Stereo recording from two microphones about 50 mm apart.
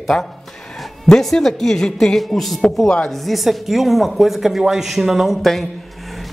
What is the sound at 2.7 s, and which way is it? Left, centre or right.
Speech, centre.